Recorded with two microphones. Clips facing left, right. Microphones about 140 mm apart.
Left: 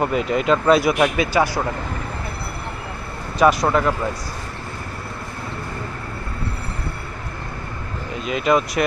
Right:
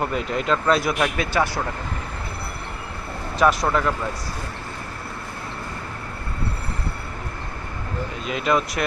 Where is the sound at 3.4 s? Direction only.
5° left (ahead or behind).